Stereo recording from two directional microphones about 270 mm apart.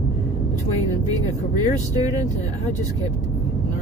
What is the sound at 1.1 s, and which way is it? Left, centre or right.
Speech, centre.